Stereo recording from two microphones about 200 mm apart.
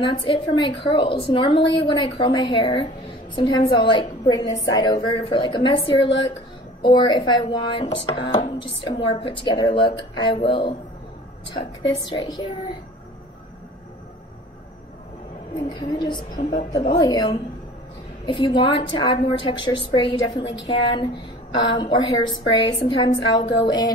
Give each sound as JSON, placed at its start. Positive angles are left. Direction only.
{"t": 0.0, "sound": "speech", "side_deg": 25}
{"t": 15.5, "sound": "speech", "side_deg": 25}
{"t": 16.3, "sound": "a woman's voice", "side_deg": 40}
{"t": 17.0, "sound": "speech", "side_deg": 20}